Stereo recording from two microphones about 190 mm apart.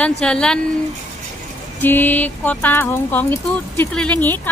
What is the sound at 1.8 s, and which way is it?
A woman's voice, 10° left (ahead or behind).